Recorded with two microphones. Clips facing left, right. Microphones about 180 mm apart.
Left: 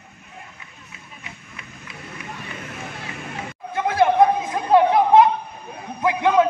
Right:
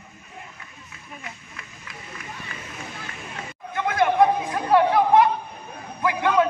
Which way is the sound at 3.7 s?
30° left (ahead or behind).